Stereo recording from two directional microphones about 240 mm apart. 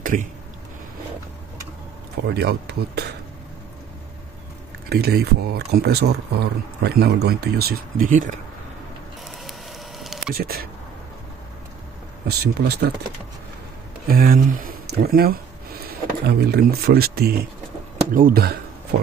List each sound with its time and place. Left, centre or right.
0.0 s a sound: right
2.2 s speech: right
4.8 s speech: right
9.4 s a sound: centre
10.3 s speech: right
12.3 s speech: right
14.0 s speech: right